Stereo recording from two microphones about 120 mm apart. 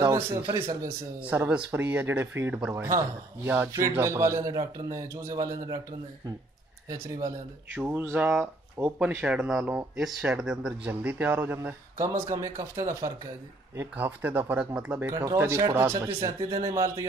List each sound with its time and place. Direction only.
0.0 s speech: 25° right (ahead or behind)
6.9 s speech: 30° right (ahead or behind)
12.0 s speech: 25° right (ahead or behind)